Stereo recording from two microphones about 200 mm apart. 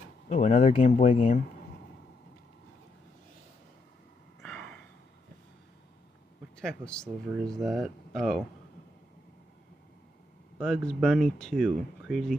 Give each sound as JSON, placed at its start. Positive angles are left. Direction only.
{"t": 0.3, "sound": "speech", "side_deg": 40}
{"t": 4.4, "sound": "a sound", "side_deg": 5}
{"t": 6.6, "sound": "speech", "side_deg": 5}
{"t": 10.9, "sound": "speech", "side_deg": 0}